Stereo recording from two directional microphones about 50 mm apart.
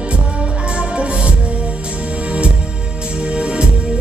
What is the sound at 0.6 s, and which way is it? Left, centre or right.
Music, right.